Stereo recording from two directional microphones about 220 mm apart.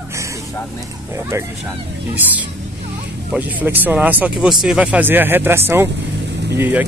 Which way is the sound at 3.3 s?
5° right (ahead or behind).